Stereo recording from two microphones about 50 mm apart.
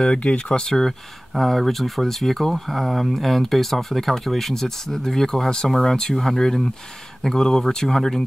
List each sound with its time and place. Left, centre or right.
0.0 s speech: centre
0.8 s speech: centre